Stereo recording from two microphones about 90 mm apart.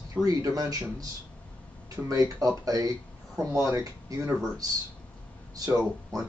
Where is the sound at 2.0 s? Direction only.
40° right (ahead or behind).